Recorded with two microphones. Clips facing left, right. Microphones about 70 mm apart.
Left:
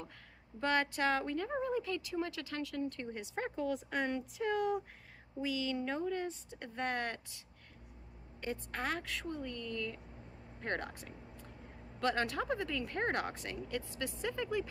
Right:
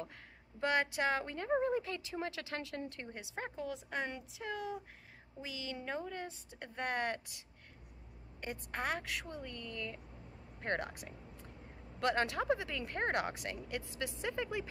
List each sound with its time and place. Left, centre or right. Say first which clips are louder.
0.6 s speech: left 1 dB; centre
3.3 s speech: left 5 dB; centre
5.4 s speech: left 8 dB; centre
8.4 s speech: left 1 dB; centre
12.2 s speech: right 1 dB; centre